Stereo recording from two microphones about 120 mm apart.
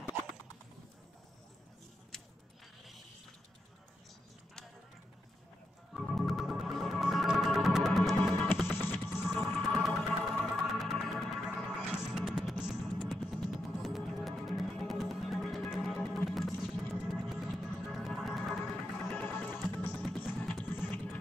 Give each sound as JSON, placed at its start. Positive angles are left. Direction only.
{"t": 2.1, "sound": "a sound", "side_deg": 5}
{"t": 5.9, "sound": "music", "side_deg": 0}
{"t": 8.8, "sound": "music", "side_deg": 20}
{"t": 9.4, "sound": "music", "side_deg": 0}
{"t": 20.0, "sound": "music", "side_deg": 0}